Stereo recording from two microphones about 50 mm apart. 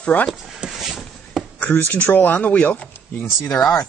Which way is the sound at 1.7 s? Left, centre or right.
Left.